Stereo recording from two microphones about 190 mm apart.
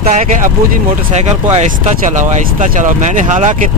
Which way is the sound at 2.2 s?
40° right (ahead or behind).